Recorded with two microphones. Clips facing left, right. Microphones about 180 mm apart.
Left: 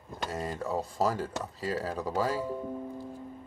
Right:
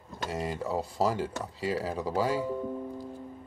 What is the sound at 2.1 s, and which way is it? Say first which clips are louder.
Speech: right 2 dB; 25° right (ahead or behind).